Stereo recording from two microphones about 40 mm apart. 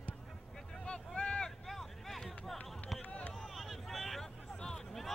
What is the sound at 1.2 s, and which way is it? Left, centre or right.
Vehicle, centre.